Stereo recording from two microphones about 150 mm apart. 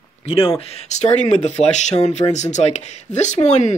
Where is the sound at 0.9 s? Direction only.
50° left (ahead or behind).